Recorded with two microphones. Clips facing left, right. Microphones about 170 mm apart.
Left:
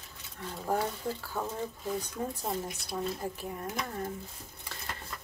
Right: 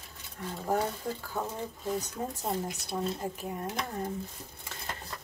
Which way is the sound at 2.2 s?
25° right (ahead or behind).